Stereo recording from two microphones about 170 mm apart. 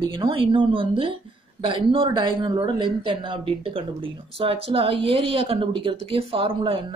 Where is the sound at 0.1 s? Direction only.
30° right (ahead or behind).